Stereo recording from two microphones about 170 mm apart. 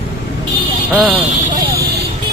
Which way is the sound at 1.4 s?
50° right (ahead or behind).